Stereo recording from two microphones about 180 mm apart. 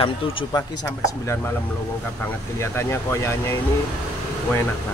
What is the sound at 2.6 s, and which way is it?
Speech, 15° left (ahead or behind).